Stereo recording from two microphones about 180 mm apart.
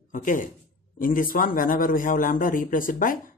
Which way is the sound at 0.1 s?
45° left (ahead or behind).